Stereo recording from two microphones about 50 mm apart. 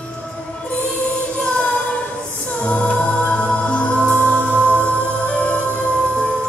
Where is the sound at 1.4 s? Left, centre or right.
Left.